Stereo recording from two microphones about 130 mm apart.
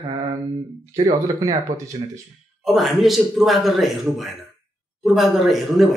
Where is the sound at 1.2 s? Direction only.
25° right (ahead or behind).